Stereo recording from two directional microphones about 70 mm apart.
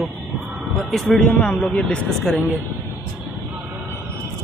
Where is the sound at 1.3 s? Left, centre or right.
Centre.